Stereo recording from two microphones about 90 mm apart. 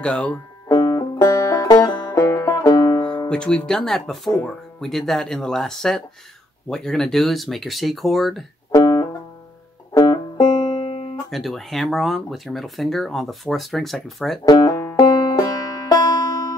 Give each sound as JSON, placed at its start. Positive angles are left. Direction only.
{"t": 0.0, "sound": "speech", "side_deg": 10}
{"t": 0.7, "sound": "music", "side_deg": 50}
{"t": 0.9, "sound": "banjo", "side_deg": 45}
{"t": 3.3, "sound": "speech", "side_deg": 10}
{"t": 8.7, "sound": "music", "side_deg": 40}
{"t": 10.8, "sound": "music", "side_deg": 90}
{"t": 11.2, "sound": "speech", "side_deg": 0}
{"t": 14.4, "sound": "speech", "side_deg": 45}
{"t": 15.0, "sound": "banjo", "side_deg": 45}